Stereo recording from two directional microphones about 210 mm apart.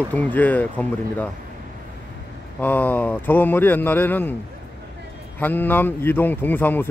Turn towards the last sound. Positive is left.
turn(degrees=10)  # may be behind; listen again after turning